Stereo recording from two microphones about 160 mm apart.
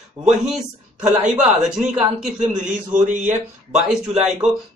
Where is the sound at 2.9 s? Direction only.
50° right (ahead or behind).